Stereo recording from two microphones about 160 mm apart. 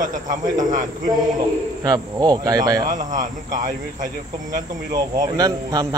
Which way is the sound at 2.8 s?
55° right (ahead or behind).